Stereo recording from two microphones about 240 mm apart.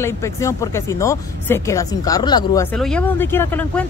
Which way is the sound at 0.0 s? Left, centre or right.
Centre.